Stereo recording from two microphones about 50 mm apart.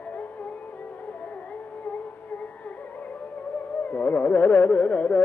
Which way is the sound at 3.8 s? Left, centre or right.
Left.